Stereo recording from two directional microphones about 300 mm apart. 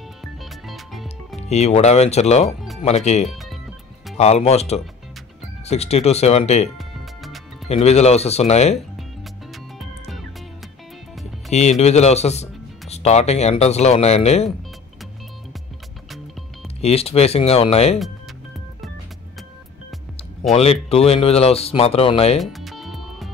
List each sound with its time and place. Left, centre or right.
0.2 s music: centre
1.5 s speech: left
4.2 s speech: left
9.8 s music: centre
11.5 s speech: left
16.8 s speech: centre
20.5 s speech: centre
22.4 s music: centre